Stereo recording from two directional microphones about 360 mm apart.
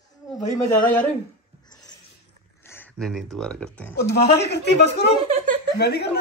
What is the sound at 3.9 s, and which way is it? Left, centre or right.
A woman's voice, left.